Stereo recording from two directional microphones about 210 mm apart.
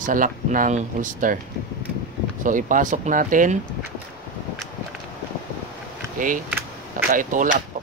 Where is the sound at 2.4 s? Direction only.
40° right (ahead or behind).